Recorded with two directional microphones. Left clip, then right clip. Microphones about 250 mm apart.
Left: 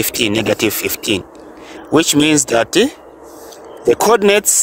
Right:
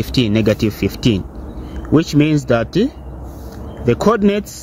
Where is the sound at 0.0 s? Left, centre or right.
Left.